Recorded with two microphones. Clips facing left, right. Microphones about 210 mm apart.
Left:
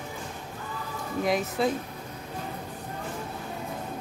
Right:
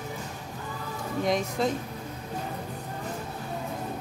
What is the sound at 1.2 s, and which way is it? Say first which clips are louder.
Speech: left 1 dB; 5° left (ahead or behind).